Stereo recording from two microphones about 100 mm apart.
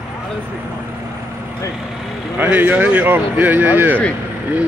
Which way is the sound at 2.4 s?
15° right (ahead or behind).